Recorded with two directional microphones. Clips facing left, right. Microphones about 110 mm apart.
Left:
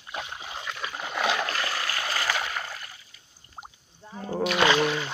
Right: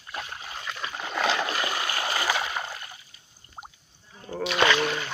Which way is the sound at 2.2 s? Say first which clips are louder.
Right 2 dB; 10° right (ahead or behind).